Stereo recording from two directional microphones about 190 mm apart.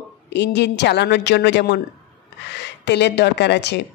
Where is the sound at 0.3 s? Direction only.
65° left (ahead or behind).